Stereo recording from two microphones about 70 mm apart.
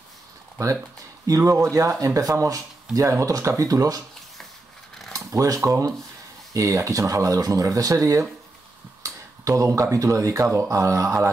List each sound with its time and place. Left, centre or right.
0.6 s speech: right
5.1 s speech: right